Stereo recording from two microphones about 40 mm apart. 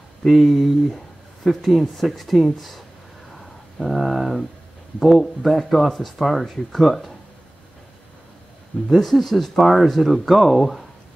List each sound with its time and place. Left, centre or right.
0.2 s speech: centre
3.8 s speech: centre
8.8 s speech: centre